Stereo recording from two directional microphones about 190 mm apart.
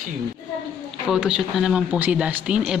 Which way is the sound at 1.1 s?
5° right (ahead or behind).